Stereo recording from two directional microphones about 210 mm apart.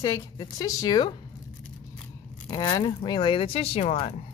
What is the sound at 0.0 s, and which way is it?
A woman's voice, 15° left (ahead or behind).